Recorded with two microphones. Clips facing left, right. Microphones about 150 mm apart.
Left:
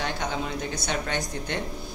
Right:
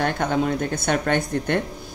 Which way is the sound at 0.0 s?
55° right (ahead or behind).